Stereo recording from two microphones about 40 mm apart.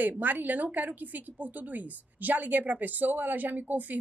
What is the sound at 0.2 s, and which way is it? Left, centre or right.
Speech, right.